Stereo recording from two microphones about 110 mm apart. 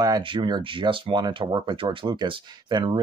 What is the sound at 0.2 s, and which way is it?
Speech, 50° right (ahead or behind).